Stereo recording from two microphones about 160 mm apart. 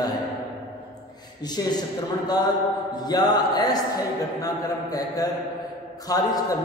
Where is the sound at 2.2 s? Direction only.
25° left (ahead or behind).